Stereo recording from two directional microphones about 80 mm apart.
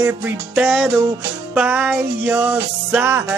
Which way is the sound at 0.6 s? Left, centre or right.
Centre.